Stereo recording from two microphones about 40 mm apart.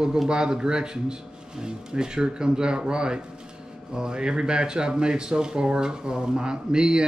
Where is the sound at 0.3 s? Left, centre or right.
Centre.